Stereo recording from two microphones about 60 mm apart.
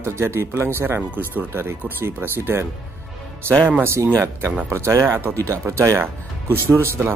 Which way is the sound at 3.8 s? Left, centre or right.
Right.